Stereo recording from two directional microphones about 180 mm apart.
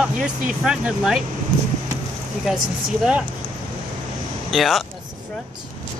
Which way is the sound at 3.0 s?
5° right (ahead or behind).